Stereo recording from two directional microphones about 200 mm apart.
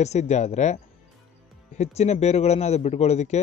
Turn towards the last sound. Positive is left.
turn(degrees=35)  # may be behind; listen again after turning